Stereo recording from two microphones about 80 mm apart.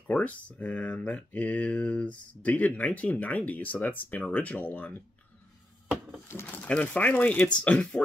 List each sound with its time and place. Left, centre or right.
0.1 s speech: centre
6.4 s speech: centre